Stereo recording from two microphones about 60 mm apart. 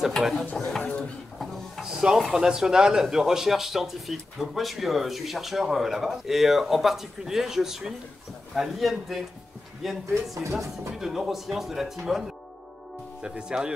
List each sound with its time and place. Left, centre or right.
0.2 s a man's voice: centre
1.4 s a sound: centre
2.3 s a man's voice: centre
13.2 s speech: centre